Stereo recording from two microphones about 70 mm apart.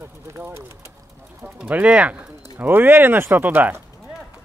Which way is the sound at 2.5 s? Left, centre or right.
Right.